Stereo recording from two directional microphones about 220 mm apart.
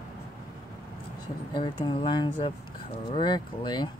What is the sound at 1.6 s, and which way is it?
Speech, 20° left (ahead or behind).